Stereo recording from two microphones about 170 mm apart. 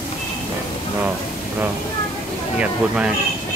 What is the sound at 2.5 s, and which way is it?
Speech, 5° right (ahead or behind).